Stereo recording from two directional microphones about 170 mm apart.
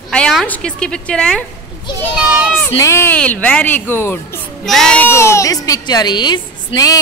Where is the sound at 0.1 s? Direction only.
5° left (ahead or behind).